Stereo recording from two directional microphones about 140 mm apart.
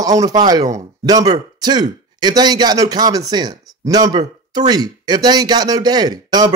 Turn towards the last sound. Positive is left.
turn(degrees=-30)  # may be behind; listen again after turning